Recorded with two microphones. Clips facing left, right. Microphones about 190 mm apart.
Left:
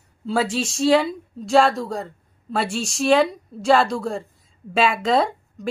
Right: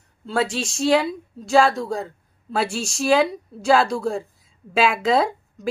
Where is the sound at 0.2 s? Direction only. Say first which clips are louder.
Left 1 dB; centre (ahead or behind).